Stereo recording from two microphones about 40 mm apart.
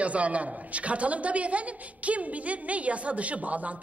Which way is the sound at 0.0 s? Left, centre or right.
Right.